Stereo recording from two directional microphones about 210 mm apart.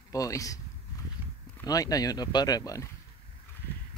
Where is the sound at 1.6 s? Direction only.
15° left (ahead or behind).